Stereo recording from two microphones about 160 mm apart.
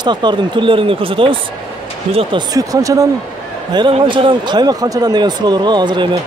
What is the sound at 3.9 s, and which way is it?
Speech, 35° right (ahead or behind).